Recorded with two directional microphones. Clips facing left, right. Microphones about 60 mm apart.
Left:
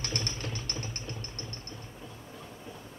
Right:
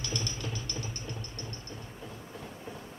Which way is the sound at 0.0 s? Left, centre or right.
Left.